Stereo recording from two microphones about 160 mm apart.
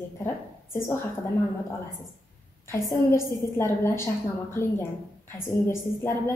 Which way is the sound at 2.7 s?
15° left (ahead or behind).